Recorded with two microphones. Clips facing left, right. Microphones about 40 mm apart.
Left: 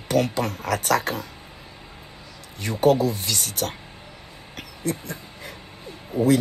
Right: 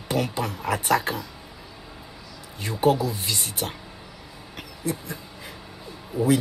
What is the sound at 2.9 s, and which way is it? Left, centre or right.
Speech, left.